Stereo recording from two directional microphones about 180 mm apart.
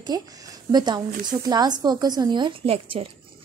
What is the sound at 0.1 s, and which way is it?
A woman's voice, 20° right (ahead or behind).